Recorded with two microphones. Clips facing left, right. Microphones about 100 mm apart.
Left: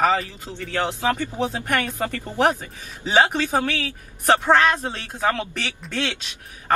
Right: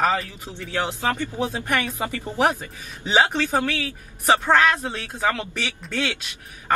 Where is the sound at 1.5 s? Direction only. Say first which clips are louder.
Left 1 dB; 10° right (ahead or behind).